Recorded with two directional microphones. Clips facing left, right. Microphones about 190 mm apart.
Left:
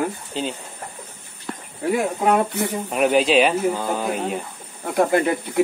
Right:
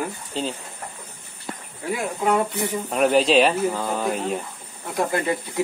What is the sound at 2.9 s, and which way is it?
Speech, 5° left (ahead or behind).